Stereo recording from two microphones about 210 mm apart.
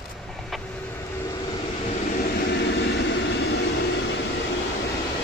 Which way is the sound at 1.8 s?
45° left (ahead or behind).